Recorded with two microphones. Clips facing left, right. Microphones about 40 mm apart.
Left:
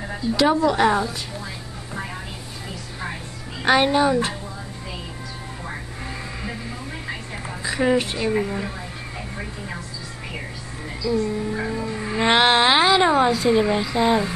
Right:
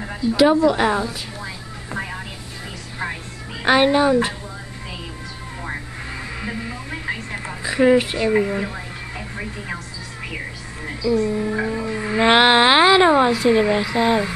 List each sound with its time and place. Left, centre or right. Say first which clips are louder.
0.3 s a woman's voice: right 3 dB; centre
1.4 s music: right 2 dB; right
3.6 s speech: right 2 dB; centre
7.6 s a woman's voice: right 5 dB; centre
11.2 s speech: right 3 dB; centre